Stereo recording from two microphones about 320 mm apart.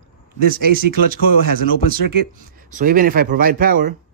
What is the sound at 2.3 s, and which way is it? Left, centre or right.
Speech, right.